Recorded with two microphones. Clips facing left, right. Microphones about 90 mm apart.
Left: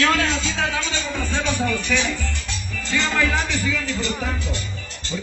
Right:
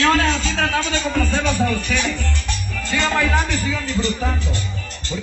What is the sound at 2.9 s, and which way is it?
Music, 50° right (ahead or behind).